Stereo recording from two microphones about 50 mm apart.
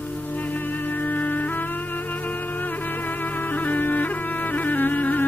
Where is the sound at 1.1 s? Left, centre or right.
Left.